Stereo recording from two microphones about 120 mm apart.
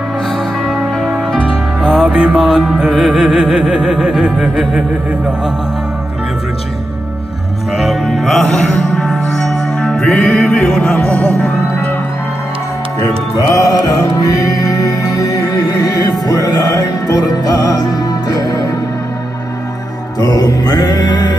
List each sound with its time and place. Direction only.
0.7 s music: centre (ahead or behind)
7.8 s music: centre (ahead or behind); by 11.9 s 15° left (ahead or behind)
13.5 s music: 30° left (ahead or behind)
20.2 s music: 30° left (ahead or behind)